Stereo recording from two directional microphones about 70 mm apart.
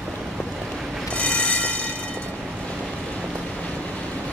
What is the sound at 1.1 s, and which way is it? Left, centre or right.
Train, centre.